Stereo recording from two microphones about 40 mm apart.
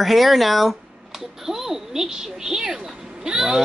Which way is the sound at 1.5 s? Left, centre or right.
Centre.